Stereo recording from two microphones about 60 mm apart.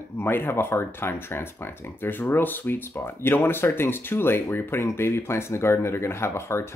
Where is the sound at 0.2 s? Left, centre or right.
Left.